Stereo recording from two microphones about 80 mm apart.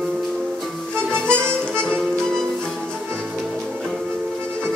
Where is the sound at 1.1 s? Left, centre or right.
Right.